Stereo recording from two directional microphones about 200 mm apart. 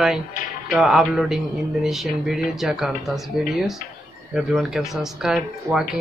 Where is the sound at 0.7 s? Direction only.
Centre (ahead or behind).